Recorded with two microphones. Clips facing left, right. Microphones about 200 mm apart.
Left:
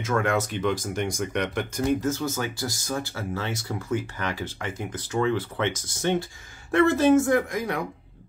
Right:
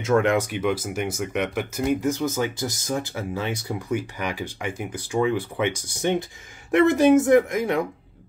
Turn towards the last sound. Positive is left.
turn(degrees=-25)  # may be behind; listen again after turning